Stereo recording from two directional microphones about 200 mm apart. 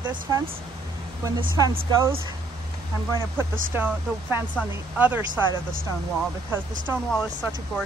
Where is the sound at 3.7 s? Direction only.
10° right (ahead or behind).